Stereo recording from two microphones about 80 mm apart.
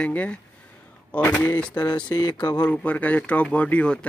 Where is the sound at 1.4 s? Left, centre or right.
Centre.